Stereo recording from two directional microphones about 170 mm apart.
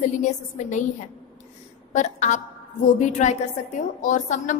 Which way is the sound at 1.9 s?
45° left (ahead or behind).